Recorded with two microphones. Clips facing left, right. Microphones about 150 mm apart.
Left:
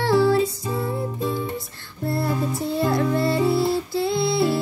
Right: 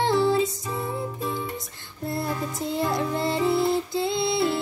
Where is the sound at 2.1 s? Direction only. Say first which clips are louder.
Left 5 dB; 20° right (ahead or behind).